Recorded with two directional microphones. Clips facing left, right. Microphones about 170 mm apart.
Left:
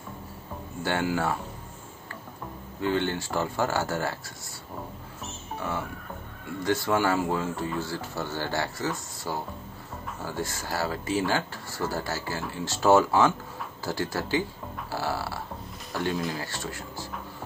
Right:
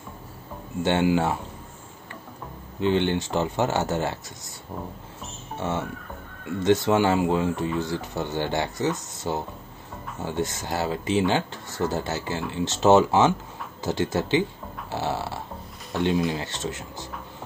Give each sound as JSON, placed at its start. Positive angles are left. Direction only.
{"t": 0.8, "sound": "speech", "side_deg": -20}
{"t": 2.8, "sound": "speech", "side_deg": -20}
{"t": 5.6, "sound": "speech", "side_deg": -25}